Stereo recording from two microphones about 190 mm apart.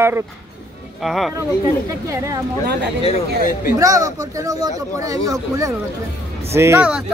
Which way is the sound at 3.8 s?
15° right (ahead or behind).